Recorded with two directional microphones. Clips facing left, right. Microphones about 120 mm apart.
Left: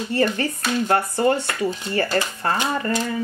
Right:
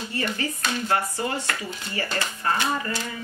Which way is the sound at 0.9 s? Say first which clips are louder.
Left 8 dB; 55° left (ahead or behind).